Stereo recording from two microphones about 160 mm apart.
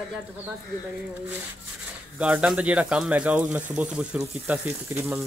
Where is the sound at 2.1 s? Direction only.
10° right (ahead or behind).